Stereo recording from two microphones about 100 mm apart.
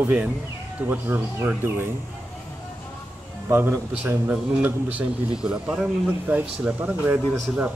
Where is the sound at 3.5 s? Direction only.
20° right (ahead or behind).